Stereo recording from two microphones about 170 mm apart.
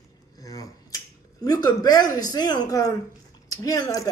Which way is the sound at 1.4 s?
20° left (ahead or behind).